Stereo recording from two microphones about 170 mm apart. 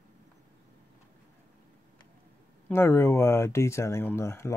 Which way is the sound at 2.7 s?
15° left (ahead or behind).